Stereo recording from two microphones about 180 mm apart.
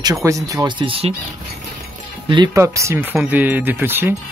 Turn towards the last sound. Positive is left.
turn(degrees=-10)  # may be behind; listen again after turning